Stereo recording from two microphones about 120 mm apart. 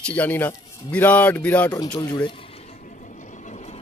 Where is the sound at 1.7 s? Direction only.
30° left (ahead or behind).